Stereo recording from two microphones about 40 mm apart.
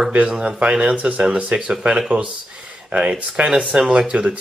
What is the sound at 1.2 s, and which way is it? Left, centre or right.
Speech, centre.